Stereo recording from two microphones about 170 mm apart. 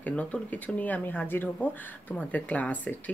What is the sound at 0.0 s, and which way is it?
Speech, 10° left (ahead or behind).